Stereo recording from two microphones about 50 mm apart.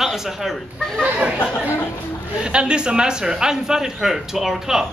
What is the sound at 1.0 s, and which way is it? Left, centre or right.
Speech, right.